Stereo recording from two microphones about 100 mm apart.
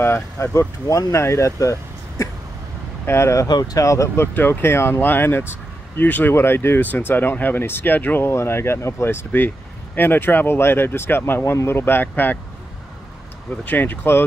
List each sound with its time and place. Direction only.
0.0 s speech: 25° left (ahead or behind)
3.4 s speech: 45° left (ahead or behind)
4.3 s speech: 20° left (ahead or behind)
13.7 s speech: 20° left (ahead or behind)